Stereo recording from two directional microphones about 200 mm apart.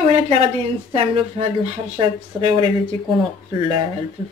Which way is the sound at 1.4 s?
30° right (ahead or behind).